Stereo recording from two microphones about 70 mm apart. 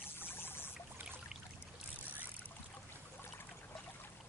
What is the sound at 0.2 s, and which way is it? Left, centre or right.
Pour, left.